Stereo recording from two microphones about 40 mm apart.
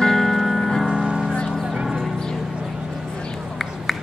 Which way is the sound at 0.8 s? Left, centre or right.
Right.